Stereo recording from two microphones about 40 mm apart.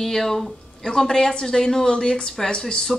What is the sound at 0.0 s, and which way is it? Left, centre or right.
Speech, centre.